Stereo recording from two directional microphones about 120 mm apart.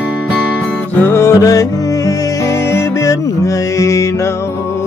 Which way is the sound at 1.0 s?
20° left (ahead or behind).